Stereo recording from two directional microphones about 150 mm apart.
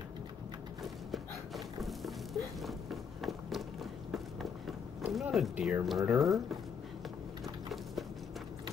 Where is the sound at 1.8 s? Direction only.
Centre (ahead or behind).